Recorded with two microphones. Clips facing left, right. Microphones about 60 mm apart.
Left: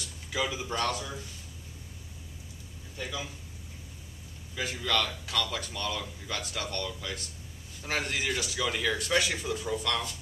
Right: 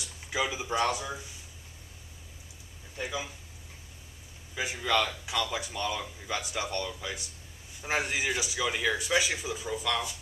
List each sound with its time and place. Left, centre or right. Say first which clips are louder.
0.0 s speech: right 1 dB; centre
3.0 s speech: right 2 dB; centre
4.6 s speech: right 2 dB; centre